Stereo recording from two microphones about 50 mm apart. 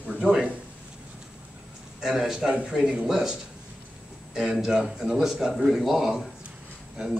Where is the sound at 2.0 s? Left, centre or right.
Centre.